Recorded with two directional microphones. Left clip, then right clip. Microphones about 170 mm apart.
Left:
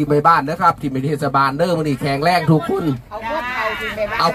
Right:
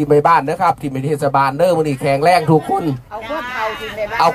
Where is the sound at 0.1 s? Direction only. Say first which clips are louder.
Right 2 dB; 45° left (ahead or behind).